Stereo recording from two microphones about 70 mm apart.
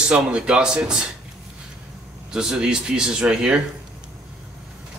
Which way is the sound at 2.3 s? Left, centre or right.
Centre.